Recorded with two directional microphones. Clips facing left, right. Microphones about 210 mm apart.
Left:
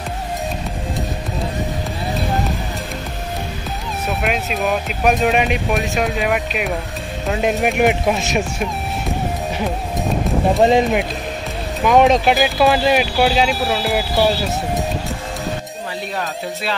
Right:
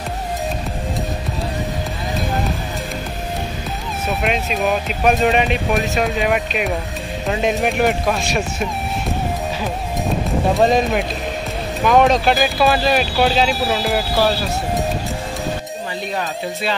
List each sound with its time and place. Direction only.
4.2 s speech: centre (ahead or behind)
7.8 s speech: 20° left (ahead or behind)
10.6 s speech: 15° left (ahead or behind)